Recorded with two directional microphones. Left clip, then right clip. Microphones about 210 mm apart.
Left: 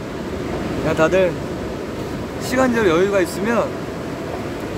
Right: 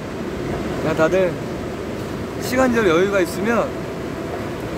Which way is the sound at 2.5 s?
Centre (ahead or behind).